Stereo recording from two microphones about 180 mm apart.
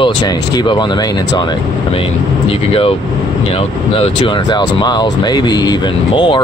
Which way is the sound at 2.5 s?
30° left (ahead or behind).